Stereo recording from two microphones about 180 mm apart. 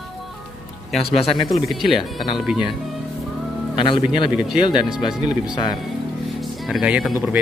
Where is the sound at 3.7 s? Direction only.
30° left (ahead or behind).